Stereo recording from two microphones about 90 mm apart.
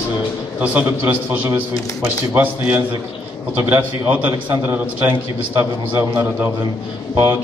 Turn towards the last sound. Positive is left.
turn(degrees=-25)  # may be behind; listen again after turning